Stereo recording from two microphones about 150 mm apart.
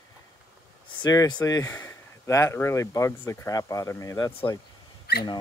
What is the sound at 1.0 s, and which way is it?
Speech, 25° left (ahead or behind).